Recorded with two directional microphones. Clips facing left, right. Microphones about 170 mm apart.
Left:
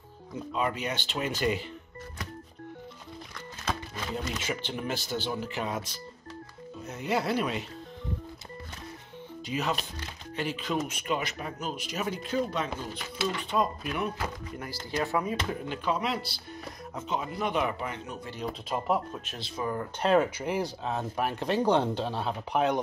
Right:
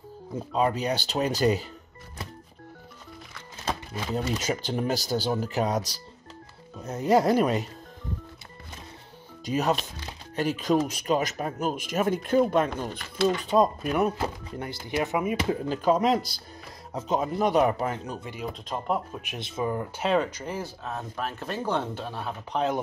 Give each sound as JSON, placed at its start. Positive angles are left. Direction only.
{"t": 0.5, "sound": "speech", "side_deg": -35}
{"t": 4.4, "sound": "speech", "side_deg": -40}
{"t": 9.5, "sound": "speech", "side_deg": -45}
{"t": 13.5, "sound": "speech", "side_deg": -40}
{"t": 14.2, "sound": "speech", "side_deg": -25}
{"t": 15.7, "sound": "speech", "side_deg": -40}
{"t": 18.4, "sound": "speech", "side_deg": 0}
{"t": 19.2, "sound": "speech", "side_deg": -20}
{"t": 20.0, "sound": "speech", "side_deg": 5}